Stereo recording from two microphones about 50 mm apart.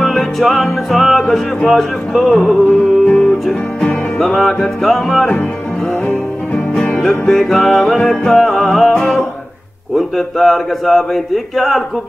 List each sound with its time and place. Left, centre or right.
0.0 s music: centre
1.3 s speech: centre
2.6 s music: left
4.2 s speech: centre
7.2 s music: centre
8.3 s speech: centre
9.9 s speech: centre